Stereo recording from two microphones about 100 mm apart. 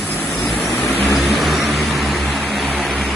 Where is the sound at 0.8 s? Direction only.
5° left (ahead or behind).